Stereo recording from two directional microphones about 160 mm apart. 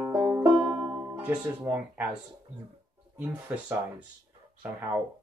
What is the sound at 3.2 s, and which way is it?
Speech, 10° right (ahead or behind).